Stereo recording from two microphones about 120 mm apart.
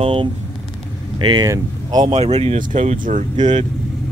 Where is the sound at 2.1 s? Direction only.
60° right (ahead or behind); by 3.2 s 80° right.